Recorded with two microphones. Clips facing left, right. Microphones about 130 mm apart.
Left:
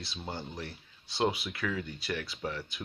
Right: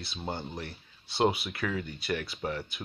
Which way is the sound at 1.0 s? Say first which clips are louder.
Right 3 dB; 60° right (ahead or behind).